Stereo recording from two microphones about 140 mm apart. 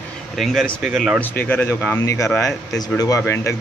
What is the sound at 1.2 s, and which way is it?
Speech, 15° left (ahead or behind).